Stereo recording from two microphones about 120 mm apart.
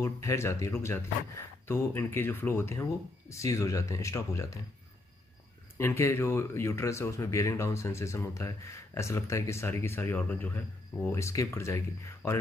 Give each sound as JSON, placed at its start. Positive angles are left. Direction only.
{"t": 0.0, "sound": "speech", "side_deg": 25}
{"t": 5.8, "sound": "speech", "side_deg": 20}